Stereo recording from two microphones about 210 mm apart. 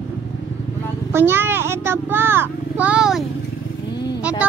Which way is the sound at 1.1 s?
10° right (ahead or behind).